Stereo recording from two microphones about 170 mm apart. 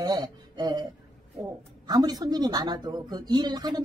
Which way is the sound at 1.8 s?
20° right (ahead or behind).